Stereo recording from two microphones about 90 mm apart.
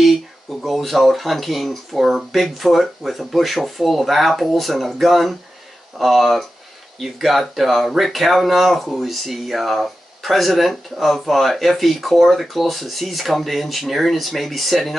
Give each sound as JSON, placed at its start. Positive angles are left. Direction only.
{"t": 0.0, "sound": "speech", "side_deg": 0}